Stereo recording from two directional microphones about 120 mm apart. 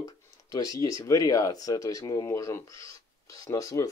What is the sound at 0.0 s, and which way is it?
Speech, 30° left (ahead or behind).